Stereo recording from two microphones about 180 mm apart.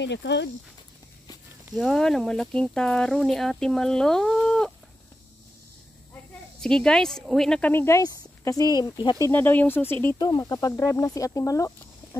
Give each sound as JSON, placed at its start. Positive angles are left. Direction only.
{"t": 0.0, "sound": "speech", "side_deg": 75}
{"t": 1.7, "sound": "speech", "side_deg": 0}
{"t": 6.6, "sound": "speech", "side_deg": 5}
{"t": 9.3, "sound": "speech", "side_deg": 10}
{"t": 10.1, "sound": "speech", "side_deg": 20}